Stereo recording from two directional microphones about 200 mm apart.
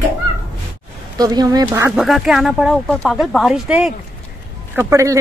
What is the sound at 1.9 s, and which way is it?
Speech, centre (ahead or behind).